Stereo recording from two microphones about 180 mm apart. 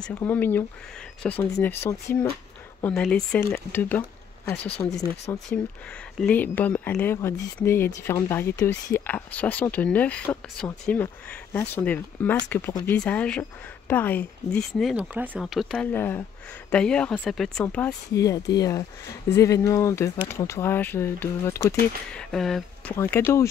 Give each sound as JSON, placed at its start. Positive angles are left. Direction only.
{"t": 0.0, "sound": "speech", "side_deg": 10}
{"t": 18.1, "sound": "speech", "side_deg": 20}
{"t": 22.3, "sound": "speech", "side_deg": 0}